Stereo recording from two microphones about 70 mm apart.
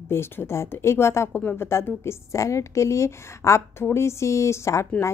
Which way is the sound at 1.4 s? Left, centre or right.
Left.